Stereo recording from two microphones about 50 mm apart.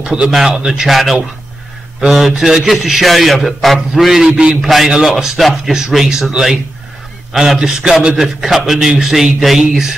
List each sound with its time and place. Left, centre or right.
0.0 s speech: centre
2.0 s a man's voice: centre
4.6 s a man's voice: centre
4.8 s a man's voice: centre